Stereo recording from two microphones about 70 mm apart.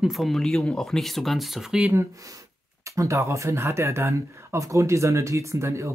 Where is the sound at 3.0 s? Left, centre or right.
Right.